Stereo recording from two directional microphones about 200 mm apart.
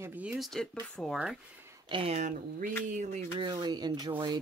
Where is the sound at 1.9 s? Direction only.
30° right (ahead or behind).